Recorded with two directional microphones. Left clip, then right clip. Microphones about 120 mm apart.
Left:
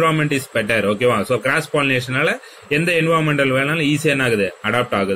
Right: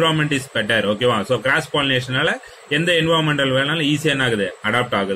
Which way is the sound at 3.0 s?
20° left (ahead or behind).